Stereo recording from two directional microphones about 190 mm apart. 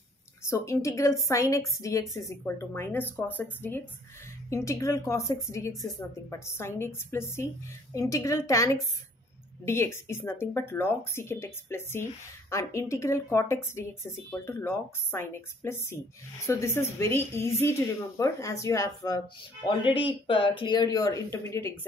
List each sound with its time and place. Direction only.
0.4 s speech: 15° left (ahead or behind)